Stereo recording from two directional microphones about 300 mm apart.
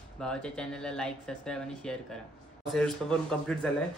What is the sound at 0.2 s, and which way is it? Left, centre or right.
Speech, centre.